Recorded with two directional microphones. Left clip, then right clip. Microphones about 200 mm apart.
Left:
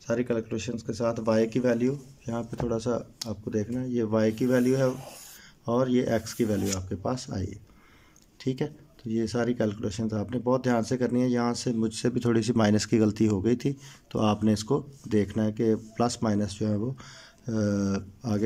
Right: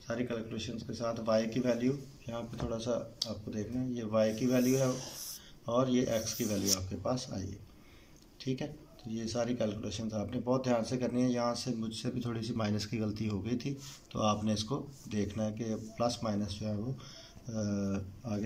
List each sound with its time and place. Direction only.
0.0 s speech: 45° left (ahead or behind)